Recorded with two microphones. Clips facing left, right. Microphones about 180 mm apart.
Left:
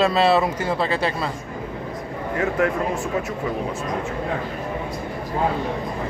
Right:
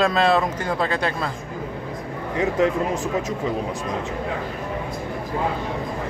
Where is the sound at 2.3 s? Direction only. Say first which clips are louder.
Right 1 dB; 20° right (ahead or behind).